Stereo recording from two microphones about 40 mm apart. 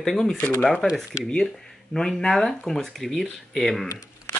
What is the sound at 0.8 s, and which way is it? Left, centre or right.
Speech, left.